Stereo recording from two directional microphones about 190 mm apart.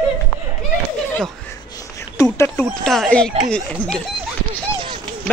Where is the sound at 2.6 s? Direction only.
Centre (ahead or behind).